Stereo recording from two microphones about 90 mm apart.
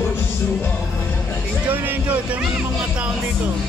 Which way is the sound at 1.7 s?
20° right (ahead or behind).